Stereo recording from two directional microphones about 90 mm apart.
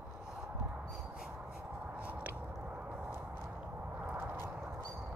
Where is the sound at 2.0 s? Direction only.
15° right (ahead or behind).